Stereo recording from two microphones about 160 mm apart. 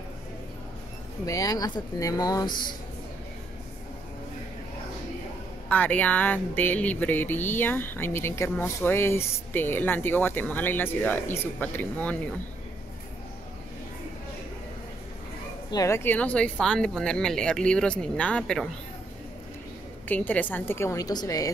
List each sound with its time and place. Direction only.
1.2 s speech: 20° left (ahead or behind)
5.7 s speech: 10° left (ahead or behind)
15.7 s speech: 20° left (ahead or behind)
20.1 s speech: 10° left (ahead or behind)